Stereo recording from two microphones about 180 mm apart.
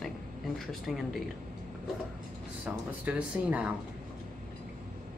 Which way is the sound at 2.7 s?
5° right (ahead or behind).